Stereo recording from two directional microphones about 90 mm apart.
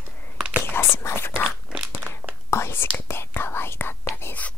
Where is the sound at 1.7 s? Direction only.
15° right (ahead or behind).